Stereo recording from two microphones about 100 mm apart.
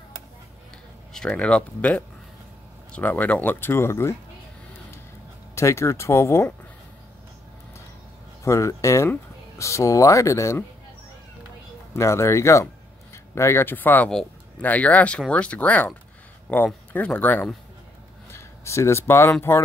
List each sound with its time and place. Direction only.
1.1 s speech: 10° left (ahead or behind); by 4.2 s 25° left (ahead or behind)
5.5 s speech: 30° left (ahead or behind)
8.5 s speech: 30° left (ahead or behind)
11.9 s speech: 30° left (ahead or behind)
18.3 s speech: 30° left (ahead or behind)